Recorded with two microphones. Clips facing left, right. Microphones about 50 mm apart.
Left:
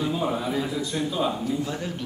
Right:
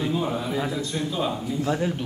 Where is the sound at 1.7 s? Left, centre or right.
Centre.